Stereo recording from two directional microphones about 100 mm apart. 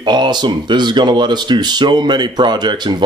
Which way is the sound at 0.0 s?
50° right (ahead or behind).